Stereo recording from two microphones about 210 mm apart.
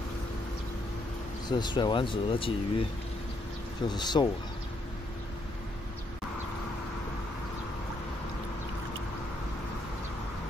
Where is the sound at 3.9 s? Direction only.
20° left (ahead or behind).